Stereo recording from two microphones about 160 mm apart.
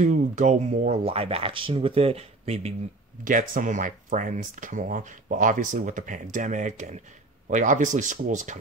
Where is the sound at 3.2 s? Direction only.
55° right (ahead or behind).